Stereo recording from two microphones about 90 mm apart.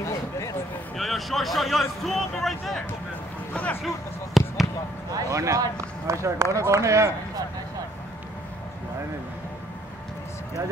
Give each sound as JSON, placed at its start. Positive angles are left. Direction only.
{"t": 0.0, "sound": "a sound", "side_deg": 35}
{"t": 0.9, "sound": "speech", "side_deg": 0}
{"t": 3.8, "sound": "speech", "side_deg": 0}
{"t": 5.1, "sound": "speech", "side_deg": -35}